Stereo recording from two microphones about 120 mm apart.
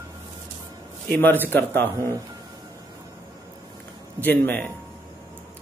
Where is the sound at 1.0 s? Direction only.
15° left (ahead or behind).